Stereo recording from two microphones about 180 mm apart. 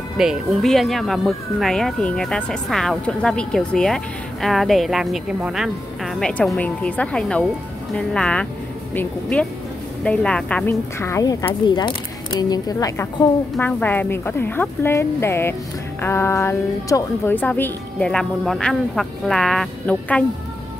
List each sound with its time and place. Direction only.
0.2 s a woman's voice: centre (ahead or behind)